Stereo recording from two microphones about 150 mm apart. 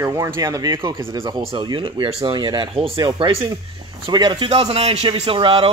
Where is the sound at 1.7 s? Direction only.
35° right (ahead or behind).